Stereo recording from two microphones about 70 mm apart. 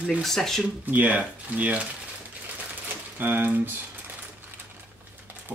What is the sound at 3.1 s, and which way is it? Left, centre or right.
Speech, right.